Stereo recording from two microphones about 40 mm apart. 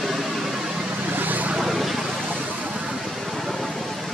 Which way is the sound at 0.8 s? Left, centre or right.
Right.